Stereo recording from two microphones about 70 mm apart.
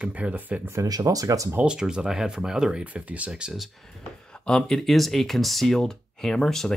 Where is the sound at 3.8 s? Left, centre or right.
Centre.